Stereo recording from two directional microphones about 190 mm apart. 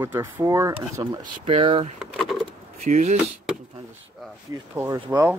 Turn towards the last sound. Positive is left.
turn(degrees=-15)  # may be behind; listen again after turning